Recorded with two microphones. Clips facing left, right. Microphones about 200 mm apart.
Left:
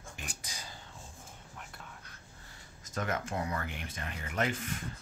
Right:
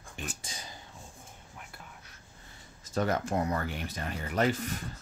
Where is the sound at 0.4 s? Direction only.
25° right (ahead or behind).